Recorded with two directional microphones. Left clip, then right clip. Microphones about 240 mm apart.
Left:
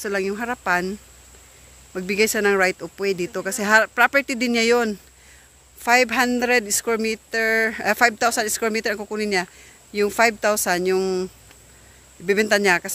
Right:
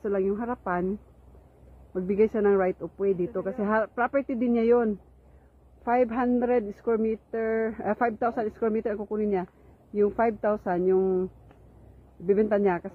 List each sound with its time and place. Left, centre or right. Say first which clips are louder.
0.0 s speech: left 3 dB; centre
2.0 s speech: left 4 dB; centre
12.3 s speech: left 6 dB; centre